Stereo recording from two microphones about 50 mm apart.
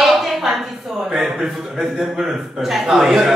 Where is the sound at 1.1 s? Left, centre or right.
Centre.